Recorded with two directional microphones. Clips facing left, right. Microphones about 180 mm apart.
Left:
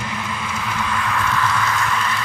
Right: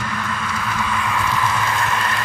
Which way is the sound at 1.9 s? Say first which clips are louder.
Even; 50° right (ahead or behind).